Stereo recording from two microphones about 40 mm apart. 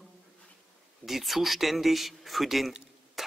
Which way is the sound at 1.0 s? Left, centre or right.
Centre.